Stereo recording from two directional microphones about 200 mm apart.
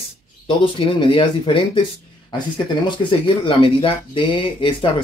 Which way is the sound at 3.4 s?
25° left (ahead or behind).